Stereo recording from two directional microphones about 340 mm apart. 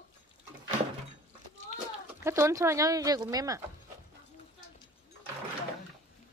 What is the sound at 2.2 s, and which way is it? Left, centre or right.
Speech, centre.